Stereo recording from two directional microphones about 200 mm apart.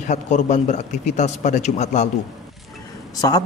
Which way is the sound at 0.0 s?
35° left (ahead or behind).